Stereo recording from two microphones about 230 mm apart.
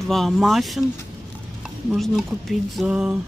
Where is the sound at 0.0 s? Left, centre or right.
Centre.